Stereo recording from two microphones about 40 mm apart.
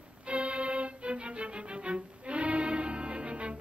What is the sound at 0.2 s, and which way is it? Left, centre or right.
Music, right.